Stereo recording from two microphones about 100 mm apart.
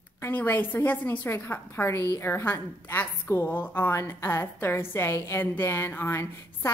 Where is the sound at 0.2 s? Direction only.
20° left (ahead or behind).